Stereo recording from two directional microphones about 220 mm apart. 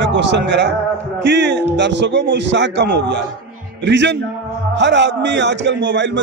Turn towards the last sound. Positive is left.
turn(degrees=-55)  # may be behind; listen again after turning